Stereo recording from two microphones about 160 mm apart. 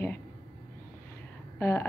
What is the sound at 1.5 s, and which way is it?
Speech, 15° left (ahead or behind).